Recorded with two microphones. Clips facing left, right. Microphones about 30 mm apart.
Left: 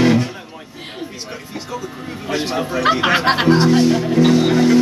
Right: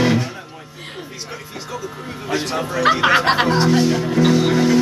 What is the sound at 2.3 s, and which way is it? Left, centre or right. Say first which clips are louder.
Music: left 1 dB; centre.